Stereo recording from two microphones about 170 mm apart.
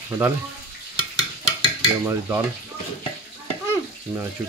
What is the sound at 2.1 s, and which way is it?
Stir, 15° right (ahead or behind).